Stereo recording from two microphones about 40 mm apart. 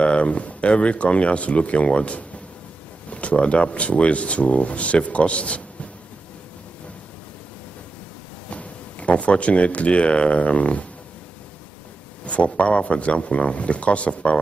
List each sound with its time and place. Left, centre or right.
0.0 s speech: left
8.5 s speech: left
12.3 s speech: left